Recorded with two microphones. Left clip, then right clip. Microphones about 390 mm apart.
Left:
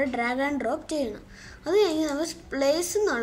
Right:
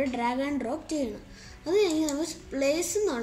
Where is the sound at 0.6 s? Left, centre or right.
Left.